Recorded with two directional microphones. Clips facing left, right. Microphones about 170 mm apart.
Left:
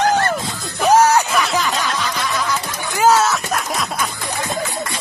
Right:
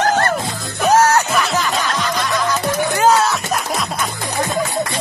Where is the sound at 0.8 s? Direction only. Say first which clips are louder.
Even; 15° left (ahead or behind).